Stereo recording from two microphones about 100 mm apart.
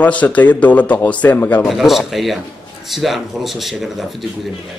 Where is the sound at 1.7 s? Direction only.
Centre (ahead or behind).